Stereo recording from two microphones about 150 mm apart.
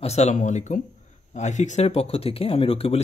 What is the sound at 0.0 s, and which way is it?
Speech, 45° left (ahead or behind).